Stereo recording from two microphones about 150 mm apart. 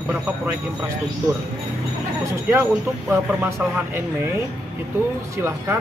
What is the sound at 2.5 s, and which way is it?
Speech, 15° right (ahead or behind).